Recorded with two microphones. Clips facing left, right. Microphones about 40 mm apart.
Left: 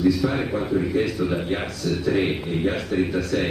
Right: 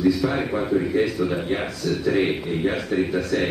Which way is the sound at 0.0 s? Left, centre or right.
Centre.